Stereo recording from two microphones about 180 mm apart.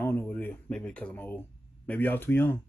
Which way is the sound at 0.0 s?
10° left (ahead or behind).